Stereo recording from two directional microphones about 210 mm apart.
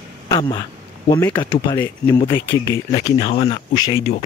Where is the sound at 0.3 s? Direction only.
20° left (ahead or behind).